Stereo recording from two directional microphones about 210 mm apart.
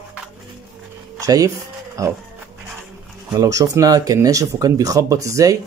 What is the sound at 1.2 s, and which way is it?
Speech, 15° right (ahead or behind).